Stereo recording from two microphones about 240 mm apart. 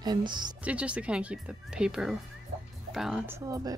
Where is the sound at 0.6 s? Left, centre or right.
Centre.